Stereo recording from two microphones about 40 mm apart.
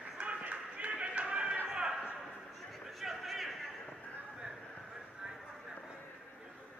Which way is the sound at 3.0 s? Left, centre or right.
Centre.